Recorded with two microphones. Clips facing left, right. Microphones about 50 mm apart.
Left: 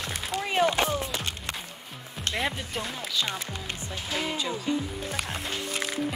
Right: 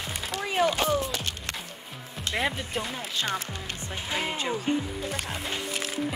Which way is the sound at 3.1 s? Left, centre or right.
Right.